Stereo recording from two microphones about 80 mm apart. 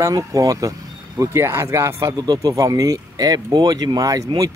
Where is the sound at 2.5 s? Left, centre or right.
Right.